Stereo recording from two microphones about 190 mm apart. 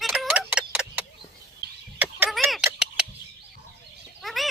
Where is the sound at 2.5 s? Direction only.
5° right (ahead or behind).